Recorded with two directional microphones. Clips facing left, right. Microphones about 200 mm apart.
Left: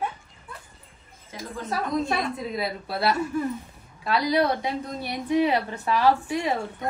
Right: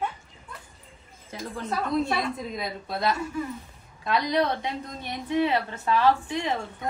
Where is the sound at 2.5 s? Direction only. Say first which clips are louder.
Left 3 dB; 5° left (ahead or behind).